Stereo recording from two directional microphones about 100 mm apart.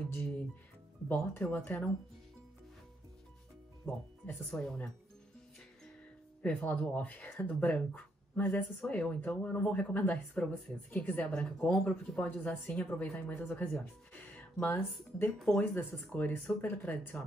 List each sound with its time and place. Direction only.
0.1 s speech: 15° left (ahead or behind)
4.3 s speech: 5° left (ahead or behind)
6.4 s speech: 10° left (ahead or behind)
14.1 s a sound: 15° left (ahead or behind)
15.3 s speech: 5° left (ahead or behind)
15.6 s speech: 20° left (ahead or behind)